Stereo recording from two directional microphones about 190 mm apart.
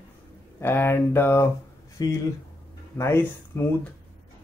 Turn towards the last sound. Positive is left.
turn(degrees=15)  # may be behind; listen again after turning